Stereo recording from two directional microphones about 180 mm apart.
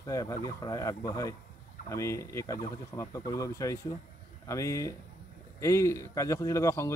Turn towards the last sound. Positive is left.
turn(degrees=15)  # may be behind; listen again after turning